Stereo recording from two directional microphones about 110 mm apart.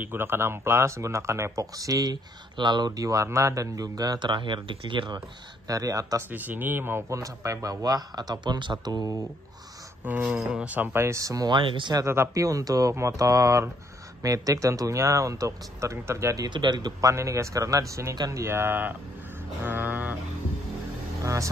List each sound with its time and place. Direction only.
0.0 s speech: 20° right (ahead or behind); by 5.2 s 45° right (ahead or behind)
5.7 s speech: 30° right (ahead or behind)
6.3 s speech: 15° right (ahead or behind); by 9.2 s 35° right (ahead or behind)
10.0 s speech: 15° right (ahead or behind); by 11.5 s 30° right (ahead or behind)
11.5 s speech: 50° right (ahead or behind)
11.9 s speech: 25° right (ahead or behind)
16.4 s speech: 45° right (ahead or behind)
17.1 s speech: 25° right (ahead or behind)
19.6 s a sound: 20° right (ahead or behind)
21.2 s vehicle: 30° right (ahead or behind)